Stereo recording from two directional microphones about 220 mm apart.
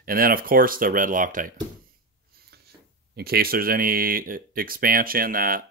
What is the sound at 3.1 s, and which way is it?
Speech, 45° right (ahead or behind).